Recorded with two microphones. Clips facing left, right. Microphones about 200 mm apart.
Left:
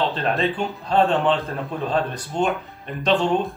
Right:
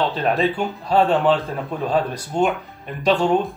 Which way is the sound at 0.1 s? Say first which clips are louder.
Right 3 dB; 5° right (ahead or behind).